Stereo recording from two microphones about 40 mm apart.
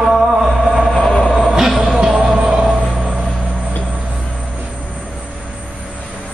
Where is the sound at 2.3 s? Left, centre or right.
Right.